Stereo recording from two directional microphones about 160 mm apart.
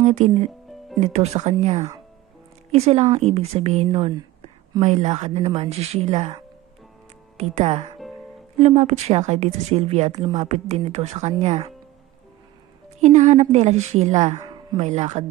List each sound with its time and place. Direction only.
0.0 s a woman's voice: 45° right (ahead or behind)
7.3 s a woman's voice: 40° right (ahead or behind)
13.0 s a woman's voice: 45° right (ahead or behind)
14.4 s a sound: 25° right (ahead or behind)
14.8 s a woman's voice: 45° right (ahead or behind)